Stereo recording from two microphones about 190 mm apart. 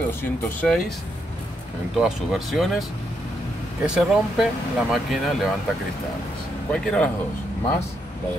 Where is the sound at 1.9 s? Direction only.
5° right (ahead or behind).